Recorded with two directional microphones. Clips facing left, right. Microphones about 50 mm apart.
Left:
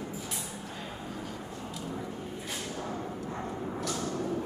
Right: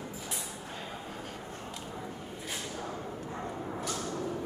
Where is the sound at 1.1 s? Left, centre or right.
Right.